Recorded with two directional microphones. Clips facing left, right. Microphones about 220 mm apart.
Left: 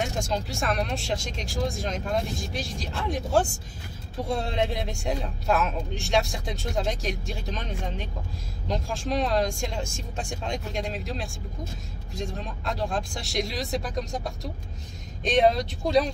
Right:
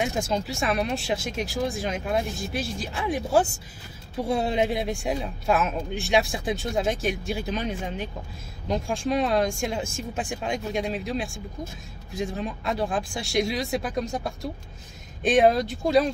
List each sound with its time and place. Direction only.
0.0 s a man's voice: 5° right (ahead or behind)